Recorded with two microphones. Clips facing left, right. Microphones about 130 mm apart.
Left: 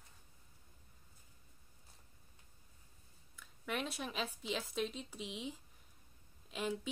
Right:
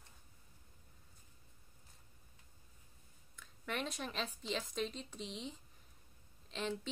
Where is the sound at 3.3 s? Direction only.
5° left (ahead or behind).